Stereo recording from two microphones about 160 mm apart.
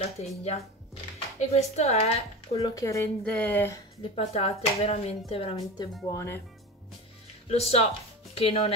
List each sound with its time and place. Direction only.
0.2 s speech: 45° left (ahead or behind)
2.7 s speech: 20° left (ahead or behind)
3.3 s speech: 10° left (ahead or behind)
4.0 s speech: 40° left (ahead or behind)
6.0 s speech: 15° left (ahead or behind)
7.4 s speech: 40° left (ahead or behind)